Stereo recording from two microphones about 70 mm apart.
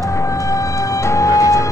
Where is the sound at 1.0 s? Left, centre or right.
Left.